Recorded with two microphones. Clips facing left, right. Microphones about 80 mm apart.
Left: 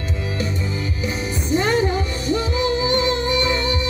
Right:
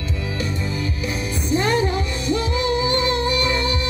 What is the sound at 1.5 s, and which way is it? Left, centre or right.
Music, left.